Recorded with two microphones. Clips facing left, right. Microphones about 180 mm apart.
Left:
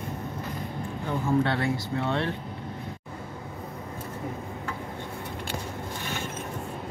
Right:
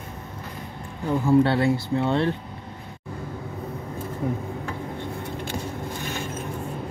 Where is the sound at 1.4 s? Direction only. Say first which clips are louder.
Right 6 dB; 30° right (ahead or behind).